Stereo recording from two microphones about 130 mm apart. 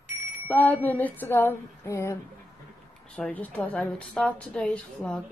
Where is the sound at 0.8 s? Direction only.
15° left (ahead or behind).